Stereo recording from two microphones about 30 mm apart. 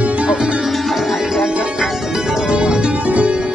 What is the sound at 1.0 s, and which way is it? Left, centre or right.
Music, centre.